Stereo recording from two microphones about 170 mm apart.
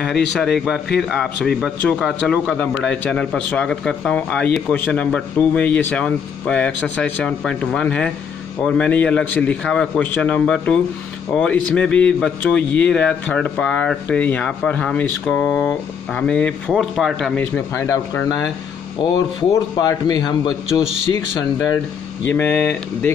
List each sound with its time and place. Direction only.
0.3 s a man's voice: centre (ahead or behind)
17.4 s a man's voice: 15° left (ahead or behind)
19.5 s a man's voice: 20° left (ahead or behind)
22.2 s a man's voice: 10° left (ahead or behind)